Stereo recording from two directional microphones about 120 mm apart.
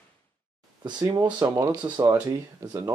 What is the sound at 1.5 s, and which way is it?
Speech, 30° right (ahead or behind).